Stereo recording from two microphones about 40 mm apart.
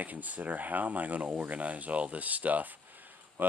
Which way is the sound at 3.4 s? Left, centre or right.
Right.